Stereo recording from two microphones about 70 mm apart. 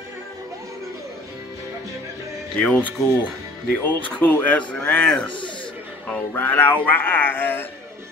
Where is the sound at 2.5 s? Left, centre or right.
Centre.